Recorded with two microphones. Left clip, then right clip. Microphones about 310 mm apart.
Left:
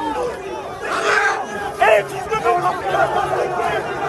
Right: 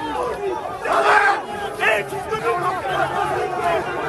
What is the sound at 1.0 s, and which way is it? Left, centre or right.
Crowd, centre.